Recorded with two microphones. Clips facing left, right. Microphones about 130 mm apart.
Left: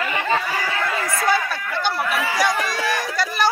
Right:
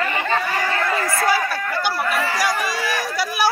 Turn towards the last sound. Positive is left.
turn(degrees=-5)  # may be behind; listen again after turning